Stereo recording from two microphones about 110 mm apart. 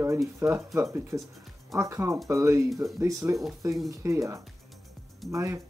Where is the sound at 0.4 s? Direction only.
20° right (ahead or behind).